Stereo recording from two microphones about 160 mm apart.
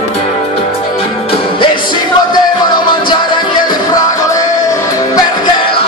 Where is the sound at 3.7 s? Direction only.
20° left (ahead or behind).